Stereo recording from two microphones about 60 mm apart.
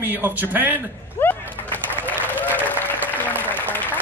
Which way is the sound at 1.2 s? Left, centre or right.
Left.